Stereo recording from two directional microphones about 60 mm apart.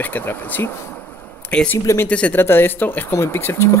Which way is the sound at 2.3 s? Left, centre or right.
Left.